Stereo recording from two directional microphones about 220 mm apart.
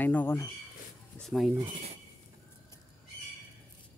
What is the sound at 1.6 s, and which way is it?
Speech, 35° right (ahead or behind).